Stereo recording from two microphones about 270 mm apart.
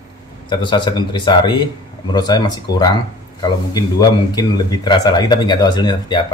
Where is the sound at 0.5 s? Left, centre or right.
Centre.